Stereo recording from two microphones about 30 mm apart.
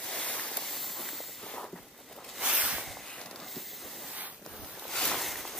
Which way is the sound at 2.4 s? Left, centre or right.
Right.